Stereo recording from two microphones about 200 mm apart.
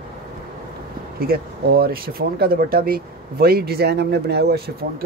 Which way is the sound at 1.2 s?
50° right (ahead or behind).